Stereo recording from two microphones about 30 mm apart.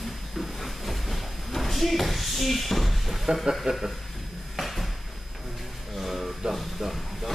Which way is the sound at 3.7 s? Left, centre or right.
Right.